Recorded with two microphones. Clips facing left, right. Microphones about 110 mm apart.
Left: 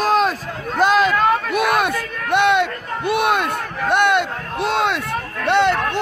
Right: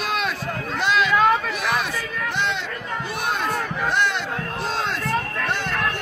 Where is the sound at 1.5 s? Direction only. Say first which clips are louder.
Left 7 dB; 55° left (ahead or behind).